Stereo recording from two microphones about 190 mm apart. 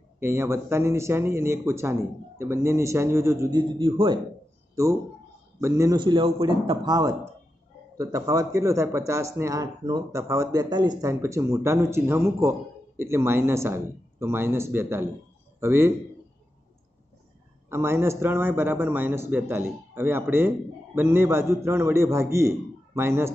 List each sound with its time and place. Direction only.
0.2 s speech: 15° right (ahead or behind)
5.6 s a man's voice: 15° right (ahead or behind)
17.6 s speech: 15° right (ahead or behind)